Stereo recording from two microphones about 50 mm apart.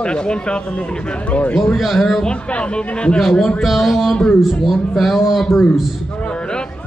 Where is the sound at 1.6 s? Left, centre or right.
Centre.